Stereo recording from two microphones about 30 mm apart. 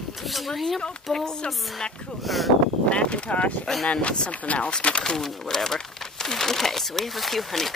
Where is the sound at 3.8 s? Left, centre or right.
Left.